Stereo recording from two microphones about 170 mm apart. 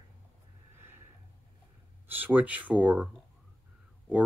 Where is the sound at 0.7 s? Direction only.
15° right (ahead or behind).